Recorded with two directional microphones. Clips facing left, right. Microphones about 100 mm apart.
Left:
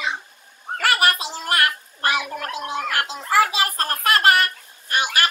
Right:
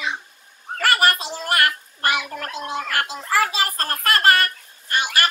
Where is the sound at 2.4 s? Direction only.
20° left (ahead or behind).